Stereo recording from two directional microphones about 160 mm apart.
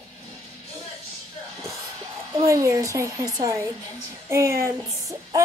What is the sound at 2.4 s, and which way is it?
A child's voice, 20° right (ahead or behind).